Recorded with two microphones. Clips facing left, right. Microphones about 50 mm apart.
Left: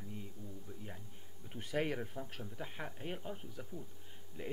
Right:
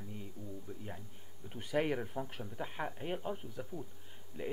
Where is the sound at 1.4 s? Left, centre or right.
Centre.